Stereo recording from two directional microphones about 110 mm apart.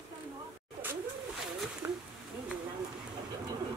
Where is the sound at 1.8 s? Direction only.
25° right (ahead or behind).